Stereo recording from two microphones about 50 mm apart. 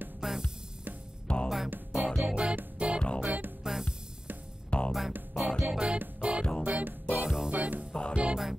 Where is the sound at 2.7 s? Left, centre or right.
Right.